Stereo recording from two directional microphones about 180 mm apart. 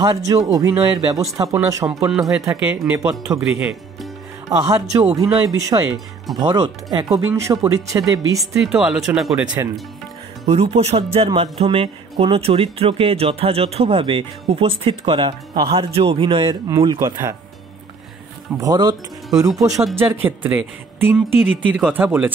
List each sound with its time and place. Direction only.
0.0 s speech: 20° right (ahead or behind)
2.6 s speech: 10° right (ahead or behind)
8.5 s speech: 5° right (ahead or behind)
10.4 s speech: 35° right (ahead or behind); by 17.4 s 20° right (ahead or behind)
18.6 s speech: 20° right (ahead or behind)
20.0 s speech: 10° right (ahead or behind)